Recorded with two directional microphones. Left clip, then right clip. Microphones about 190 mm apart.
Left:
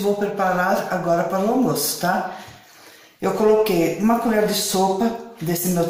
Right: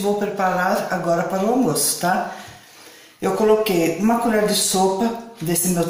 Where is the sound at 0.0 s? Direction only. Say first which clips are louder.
Even; centre (ahead or behind).